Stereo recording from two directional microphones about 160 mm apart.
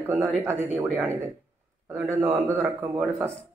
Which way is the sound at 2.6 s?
10° right (ahead or behind).